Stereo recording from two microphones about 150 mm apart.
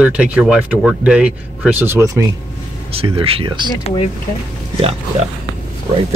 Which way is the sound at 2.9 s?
40° right (ahead or behind).